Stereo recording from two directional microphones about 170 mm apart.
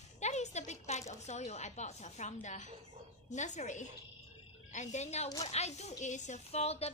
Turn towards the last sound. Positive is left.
turn(degrees=35)  # may be behind; listen again after turning